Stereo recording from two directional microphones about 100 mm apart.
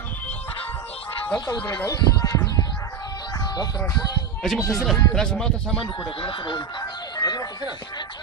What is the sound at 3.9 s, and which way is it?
Speech, 40° left (ahead or behind).